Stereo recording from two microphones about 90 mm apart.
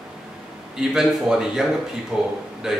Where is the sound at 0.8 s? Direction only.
5° right (ahead or behind).